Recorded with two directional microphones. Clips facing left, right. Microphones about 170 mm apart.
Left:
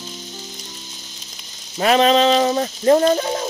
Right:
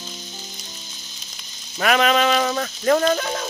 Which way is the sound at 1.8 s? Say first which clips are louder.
Left 4 dB; 30° left (ahead or behind).